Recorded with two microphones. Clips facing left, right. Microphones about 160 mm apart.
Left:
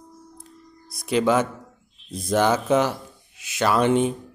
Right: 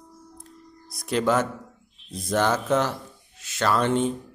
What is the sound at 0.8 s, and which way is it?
A man's voice, centre (ahead or behind).